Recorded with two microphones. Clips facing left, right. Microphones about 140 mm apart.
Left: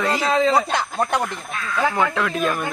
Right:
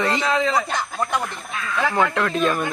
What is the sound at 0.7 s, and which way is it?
Speech, 60° left (ahead or behind).